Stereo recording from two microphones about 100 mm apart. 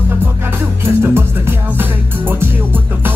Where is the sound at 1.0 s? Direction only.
25° right (ahead or behind).